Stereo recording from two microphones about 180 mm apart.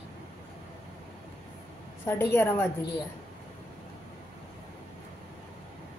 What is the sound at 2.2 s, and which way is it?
Speech, 15° left (ahead or behind).